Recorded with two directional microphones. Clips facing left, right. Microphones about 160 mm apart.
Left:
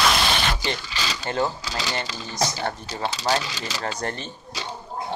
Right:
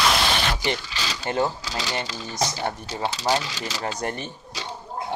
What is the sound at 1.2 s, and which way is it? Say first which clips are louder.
Speech: right 2 dB; 15° right (ahead or behind).